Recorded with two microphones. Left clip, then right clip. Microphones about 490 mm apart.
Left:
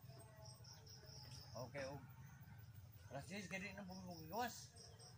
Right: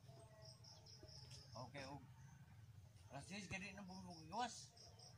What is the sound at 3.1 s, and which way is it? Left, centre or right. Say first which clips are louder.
Speech: left 2 dB; right.